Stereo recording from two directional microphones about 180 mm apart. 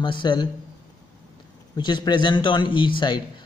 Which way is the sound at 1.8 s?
25° left (ahead or behind).